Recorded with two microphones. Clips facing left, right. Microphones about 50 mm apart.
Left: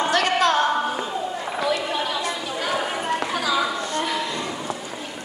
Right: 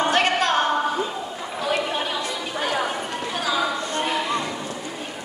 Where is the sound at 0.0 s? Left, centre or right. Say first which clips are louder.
Even; right.